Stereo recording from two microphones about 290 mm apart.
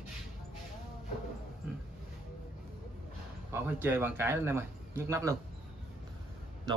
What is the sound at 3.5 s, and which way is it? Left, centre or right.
Speech, centre.